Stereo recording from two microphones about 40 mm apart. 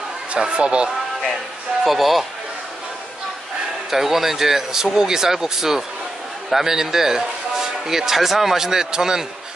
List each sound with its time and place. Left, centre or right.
0.4 s a man's voice: right
1.9 s a man's voice: centre
3.9 s speech: centre